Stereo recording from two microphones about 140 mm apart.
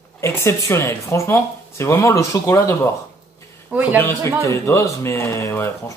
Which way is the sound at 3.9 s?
15° left (ahead or behind).